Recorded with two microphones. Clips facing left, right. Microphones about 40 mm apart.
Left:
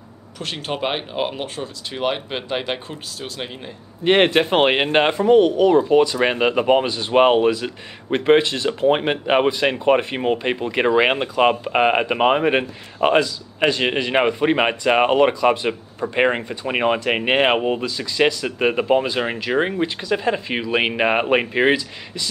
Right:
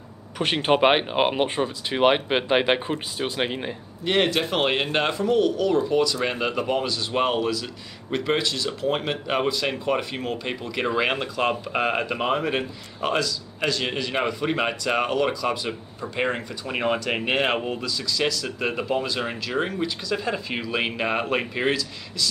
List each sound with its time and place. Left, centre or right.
0.4 s speech: right
4.0 s speech: left